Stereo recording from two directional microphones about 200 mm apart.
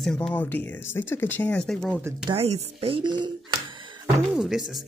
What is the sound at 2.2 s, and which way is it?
Speech, 30° right (ahead or behind).